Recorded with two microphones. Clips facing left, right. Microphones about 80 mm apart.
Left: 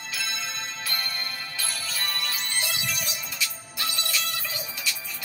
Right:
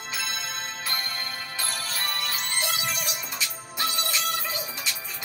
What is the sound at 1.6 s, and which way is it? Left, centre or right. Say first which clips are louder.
Music: right 2 dB; right.